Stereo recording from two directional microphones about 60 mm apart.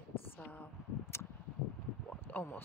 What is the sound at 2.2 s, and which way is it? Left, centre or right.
Speech, left.